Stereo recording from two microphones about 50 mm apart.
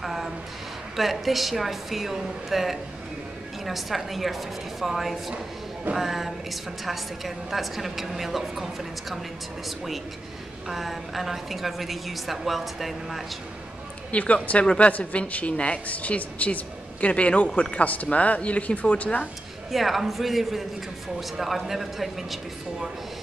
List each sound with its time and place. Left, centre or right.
0.0 s a sound: centre
0.9 s a woman's voice: centre
10.7 s a woman's voice: centre
14.1 s a woman's voice: left
19.7 s a woman's voice: centre